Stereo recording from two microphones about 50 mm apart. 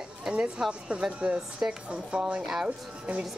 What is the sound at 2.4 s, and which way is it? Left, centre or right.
Speech, centre.